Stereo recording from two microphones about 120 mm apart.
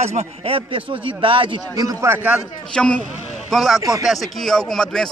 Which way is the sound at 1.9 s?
25° right (ahead or behind).